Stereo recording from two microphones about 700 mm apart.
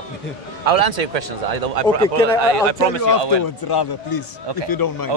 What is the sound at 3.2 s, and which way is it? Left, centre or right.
Speech, right.